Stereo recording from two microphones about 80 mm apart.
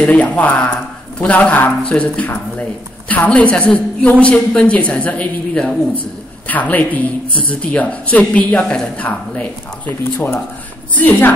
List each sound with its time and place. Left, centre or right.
0.0 s a woman's voice: centre
11.0 s speech: left